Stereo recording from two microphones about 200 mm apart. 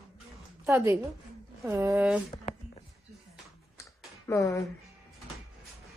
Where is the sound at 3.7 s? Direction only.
15° left (ahead or behind).